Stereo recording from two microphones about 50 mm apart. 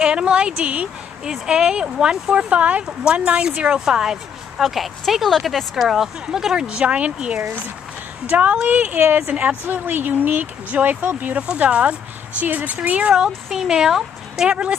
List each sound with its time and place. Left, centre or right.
0.0 s speech: centre
2.5 s speech: right
11.3 s speech: right
13.1 s speech: centre